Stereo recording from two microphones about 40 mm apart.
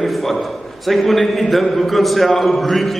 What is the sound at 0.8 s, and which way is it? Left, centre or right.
A man's voice, centre.